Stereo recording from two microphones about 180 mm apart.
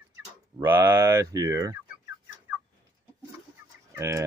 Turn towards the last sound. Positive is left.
turn(degrees=-15)  # may be behind; listen again after turning